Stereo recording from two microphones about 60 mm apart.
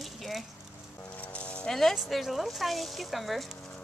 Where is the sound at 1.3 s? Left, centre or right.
Centre.